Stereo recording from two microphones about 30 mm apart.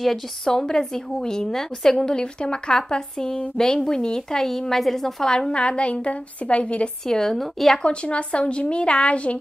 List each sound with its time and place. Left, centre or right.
0.5 s a woman's voice: left
2.1 s a woman's voice: left; by 5.3 s centre
5.5 s speech: left
7.1 s a woman's voice: centre
7.8 s speech: left